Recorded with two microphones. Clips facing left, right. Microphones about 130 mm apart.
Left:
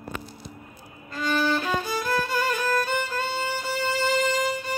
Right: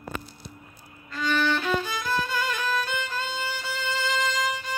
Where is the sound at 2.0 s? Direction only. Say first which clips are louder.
Left 2 dB; 45° left (ahead or behind).